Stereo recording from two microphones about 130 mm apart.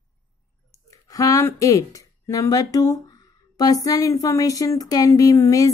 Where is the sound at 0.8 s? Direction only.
25° left (ahead or behind).